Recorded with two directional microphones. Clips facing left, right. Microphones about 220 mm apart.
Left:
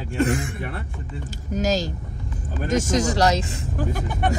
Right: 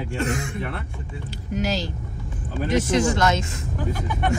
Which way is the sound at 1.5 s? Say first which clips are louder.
Left 3 dB; 45° left (ahead or behind).